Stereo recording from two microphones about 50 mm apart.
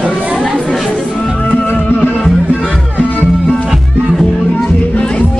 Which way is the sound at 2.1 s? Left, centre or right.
Centre.